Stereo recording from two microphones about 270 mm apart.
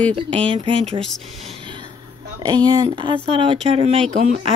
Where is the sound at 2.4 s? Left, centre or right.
Centre.